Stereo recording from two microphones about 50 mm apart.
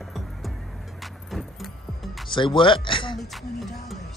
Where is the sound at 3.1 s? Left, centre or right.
Centre.